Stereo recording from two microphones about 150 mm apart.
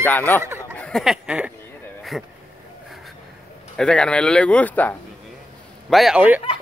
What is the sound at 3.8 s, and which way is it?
Speech, 5° left (ahead or behind).